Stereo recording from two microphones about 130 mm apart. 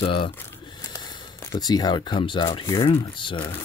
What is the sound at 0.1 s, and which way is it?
Speech, 35° left (ahead or behind).